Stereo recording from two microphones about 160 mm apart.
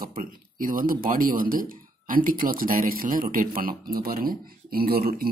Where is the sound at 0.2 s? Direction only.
60° right (ahead or behind).